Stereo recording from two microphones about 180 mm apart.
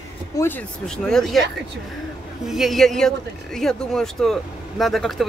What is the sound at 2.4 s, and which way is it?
Speech, centre (ahead or behind).